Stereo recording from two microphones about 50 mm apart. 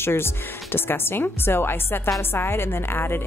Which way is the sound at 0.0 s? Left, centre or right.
Left.